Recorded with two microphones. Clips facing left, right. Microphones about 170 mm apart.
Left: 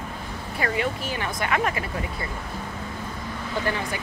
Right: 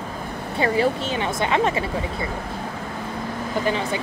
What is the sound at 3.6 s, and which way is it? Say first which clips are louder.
Speech: right 5 dB; 20° right (ahead or behind).